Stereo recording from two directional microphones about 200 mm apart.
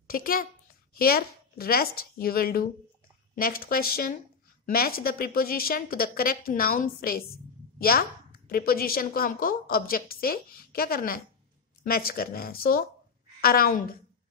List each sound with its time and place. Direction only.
0.1 s a woman's voice: 45° left (ahead or behind)
8.5 s a woman's voice: 45° left (ahead or behind)